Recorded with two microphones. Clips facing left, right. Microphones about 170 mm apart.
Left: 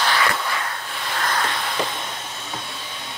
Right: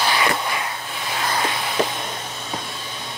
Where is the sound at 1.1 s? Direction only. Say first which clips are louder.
Right 1 dB; 10° right (ahead or behind).